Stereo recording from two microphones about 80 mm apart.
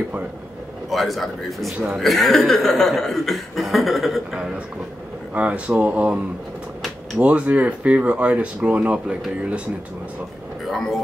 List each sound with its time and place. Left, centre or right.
0.8 s speech: centre
5.3 s speech: centre
7.2 s speech: centre